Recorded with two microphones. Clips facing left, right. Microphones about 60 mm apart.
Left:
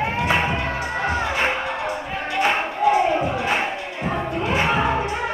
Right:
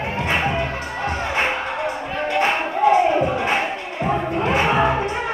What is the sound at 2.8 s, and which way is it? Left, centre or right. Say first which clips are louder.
Crowd: right 2 dB; right.